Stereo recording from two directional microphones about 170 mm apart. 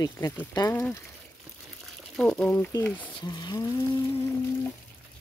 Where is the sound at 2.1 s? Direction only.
5° left (ahead or behind).